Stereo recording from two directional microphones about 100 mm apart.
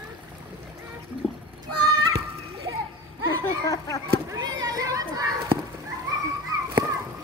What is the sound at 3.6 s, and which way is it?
Speech, 35° left (ahead or behind).